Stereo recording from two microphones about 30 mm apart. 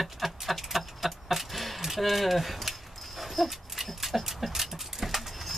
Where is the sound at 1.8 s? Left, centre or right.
Centre.